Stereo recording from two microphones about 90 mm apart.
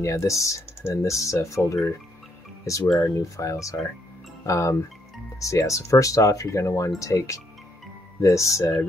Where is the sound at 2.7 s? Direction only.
40° left (ahead or behind).